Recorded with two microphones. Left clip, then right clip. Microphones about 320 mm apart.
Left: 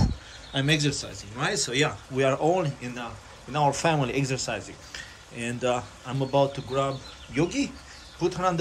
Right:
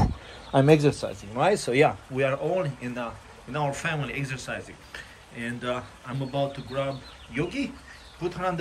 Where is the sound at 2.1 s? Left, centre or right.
Centre.